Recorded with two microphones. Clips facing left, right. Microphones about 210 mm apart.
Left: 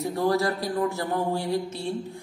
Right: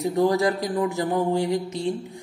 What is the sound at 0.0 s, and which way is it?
A man's voice, 15° right (ahead or behind).